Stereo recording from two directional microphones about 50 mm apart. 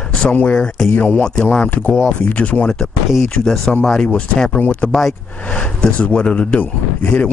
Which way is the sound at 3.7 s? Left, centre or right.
Centre.